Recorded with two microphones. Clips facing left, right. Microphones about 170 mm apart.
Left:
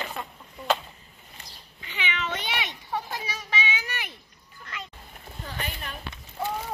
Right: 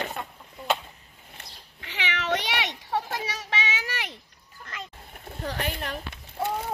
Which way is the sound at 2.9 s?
85° right.